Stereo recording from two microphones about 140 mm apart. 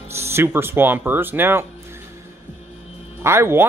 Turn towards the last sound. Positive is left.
turn(degrees=-15)  # may be behind; listen again after turning